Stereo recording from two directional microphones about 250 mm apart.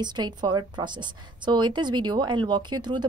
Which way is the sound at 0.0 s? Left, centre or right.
Centre.